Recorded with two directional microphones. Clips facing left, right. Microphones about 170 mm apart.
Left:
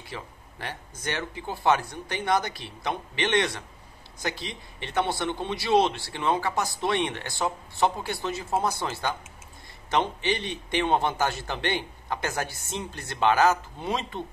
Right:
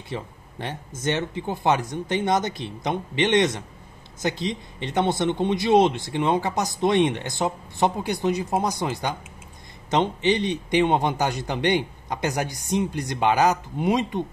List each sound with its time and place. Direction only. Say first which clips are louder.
0.1 s a man's voice: right 7 dB; 20° right (ahead or behind)